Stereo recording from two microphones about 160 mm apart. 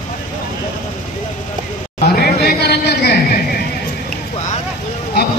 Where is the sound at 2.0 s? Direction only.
80° left.